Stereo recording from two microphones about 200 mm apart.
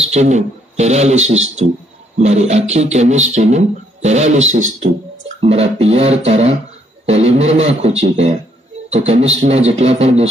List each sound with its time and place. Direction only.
0.0 s speech: 35° right (ahead or behind)